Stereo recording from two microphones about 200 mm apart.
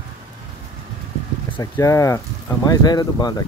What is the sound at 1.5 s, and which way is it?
Speech, 15° left (ahead or behind).